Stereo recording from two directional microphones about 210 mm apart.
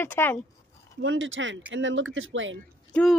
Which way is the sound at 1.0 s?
65° right (ahead or behind).